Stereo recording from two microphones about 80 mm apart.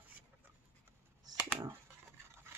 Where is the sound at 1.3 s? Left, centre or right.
Right.